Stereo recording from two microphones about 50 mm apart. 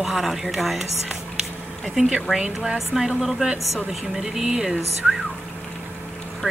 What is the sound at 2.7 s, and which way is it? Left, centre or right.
Speech, centre.